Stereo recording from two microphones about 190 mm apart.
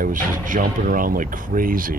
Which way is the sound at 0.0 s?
45° right (ahead or behind).